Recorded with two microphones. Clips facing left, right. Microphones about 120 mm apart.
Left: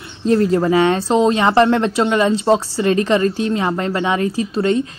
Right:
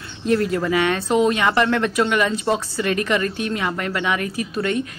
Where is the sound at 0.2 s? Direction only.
30° left (ahead or behind).